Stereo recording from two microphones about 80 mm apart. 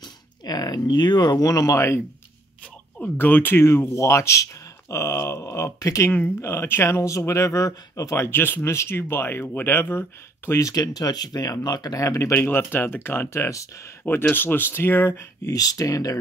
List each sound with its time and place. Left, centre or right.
0.5 s speech: left
3.0 s speech: left
6.4 s speech: left
8.3 s speech: left
10.6 s speech: left
14.3 s speech: left
15.5 s speech: left